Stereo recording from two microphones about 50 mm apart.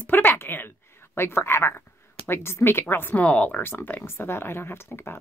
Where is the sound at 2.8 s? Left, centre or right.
Left.